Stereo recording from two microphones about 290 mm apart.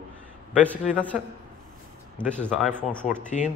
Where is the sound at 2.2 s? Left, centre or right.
Centre.